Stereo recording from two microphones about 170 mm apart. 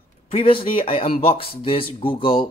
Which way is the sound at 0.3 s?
30° left (ahead or behind).